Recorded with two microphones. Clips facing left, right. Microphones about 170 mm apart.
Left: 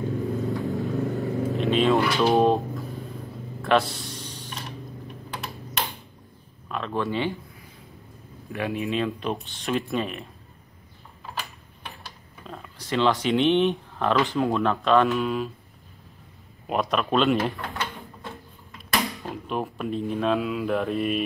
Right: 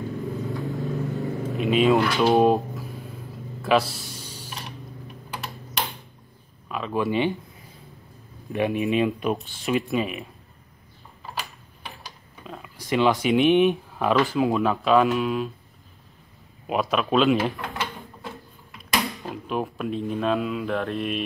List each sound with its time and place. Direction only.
0.4 s vehicle: centre (ahead or behind)
3.6 s a sound: centre (ahead or behind)
6.7 s a sound: 5° right (ahead or behind)
7.0 s speech: 15° right (ahead or behind)
8.5 s speech: 20° right (ahead or behind)
12.4 s speech: 5° right (ahead or behind)
16.6 s speech: centre (ahead or behind)